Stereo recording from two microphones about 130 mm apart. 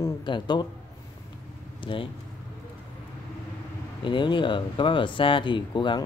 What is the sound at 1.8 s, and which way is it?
Speech, 40° left (ahead or behind).